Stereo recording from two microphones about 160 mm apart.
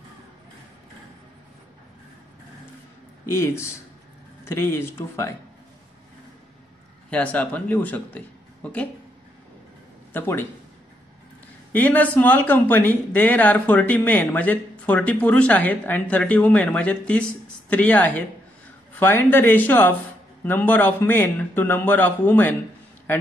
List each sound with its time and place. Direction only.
3.3 s speech: 15° left (ahead or behind)
7.1 s speech: 10° left (ahead or behind)
10.1 s speech: 15° left (ahead or behind)
11.7 s speech: 10° left (ahead or behind)